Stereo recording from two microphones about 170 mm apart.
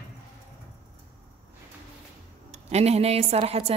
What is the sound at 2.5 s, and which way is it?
A woman's voice, 40° right (ahead or behind).